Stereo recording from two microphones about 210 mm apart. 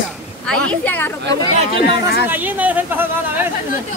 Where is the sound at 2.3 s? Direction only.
10° right (ahead or behind).